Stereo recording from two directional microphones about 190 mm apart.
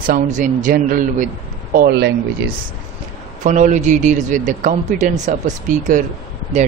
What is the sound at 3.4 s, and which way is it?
A man's voice, 40° right (ahead or behind).